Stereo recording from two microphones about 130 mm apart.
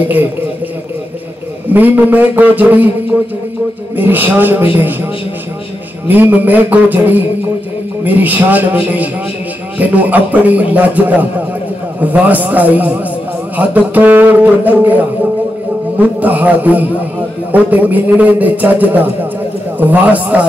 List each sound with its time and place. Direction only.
1.7 s a man's voice: 15° right (ahead or behind)
3.9 s a man's voice: 15° right (ahead or behind)
6.0 s a man's voice: 15° right (ahead or behind)
16.0 s a man's voice: 15° right (ahead or behind)